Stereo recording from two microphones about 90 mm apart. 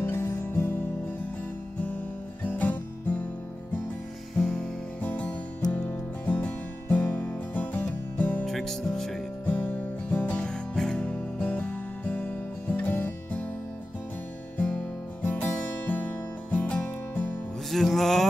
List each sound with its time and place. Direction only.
0.0 s music: 25° left (ahead or behind)
4.4 s music: 10° left (ahead or behind)
8.5 s music: 5° left (ahead or behind)
9.5 s music: 15° left (ahead or behind)
14.6 s music: 20° left (ahead or behind)
17.6 s music: centre (ahead or behind)